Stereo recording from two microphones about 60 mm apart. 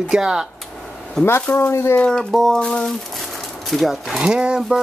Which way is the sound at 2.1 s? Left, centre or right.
Centre.